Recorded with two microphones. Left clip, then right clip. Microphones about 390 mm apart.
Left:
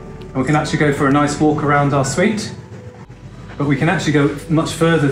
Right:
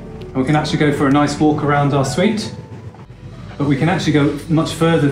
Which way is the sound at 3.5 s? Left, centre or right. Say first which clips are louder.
Even; centre.